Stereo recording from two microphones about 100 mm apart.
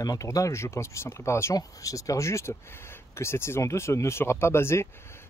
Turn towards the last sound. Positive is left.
turn(degrees=25)  # may be behind; listen again after turning